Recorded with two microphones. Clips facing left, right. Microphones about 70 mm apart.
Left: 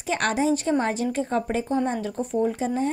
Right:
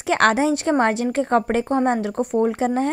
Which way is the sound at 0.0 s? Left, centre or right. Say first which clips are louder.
Right 6 dB; right.